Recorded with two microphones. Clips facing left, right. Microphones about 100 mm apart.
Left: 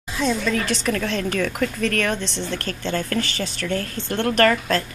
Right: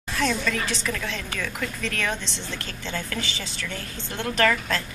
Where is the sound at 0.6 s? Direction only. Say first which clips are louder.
Left 6 dB; 55° left (ahead or behind).